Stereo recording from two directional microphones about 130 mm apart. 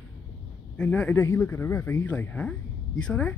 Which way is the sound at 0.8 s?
10° left (ahead or behind).